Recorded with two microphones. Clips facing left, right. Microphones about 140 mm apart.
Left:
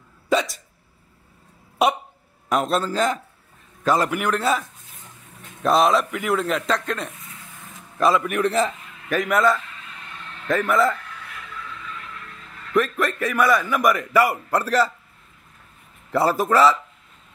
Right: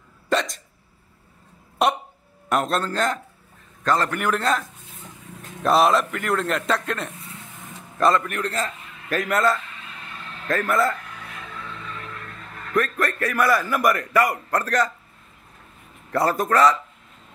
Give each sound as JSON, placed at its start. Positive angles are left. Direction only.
{"t": 0.3, "sound": "hiccup", "side_deg": 5}
{"t": 1.8, "sound": "a sound", "side_deg": 0}
{"t": 2.5, "sound": "a man's voice", "side_deg": 0}
{"t": 11.5, "sound": "vehicle", "side_deg": -45}
{"t": 12.7, "sound": "a man's voice", "side_deg": 0}
{"t": 16.1, "sound": "a man's voice", "side_deg": 5}